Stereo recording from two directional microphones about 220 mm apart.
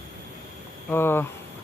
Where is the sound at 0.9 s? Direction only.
10° left (ahead or behind).